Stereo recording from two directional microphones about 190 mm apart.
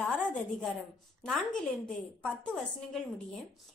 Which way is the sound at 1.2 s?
5° left (ahead or behind).